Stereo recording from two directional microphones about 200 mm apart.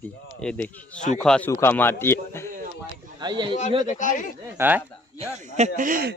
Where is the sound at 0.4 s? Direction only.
5° left (ahead or behind).